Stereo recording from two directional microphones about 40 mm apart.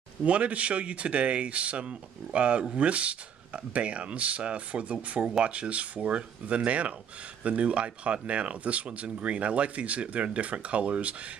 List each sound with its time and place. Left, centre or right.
0.2 s speech: right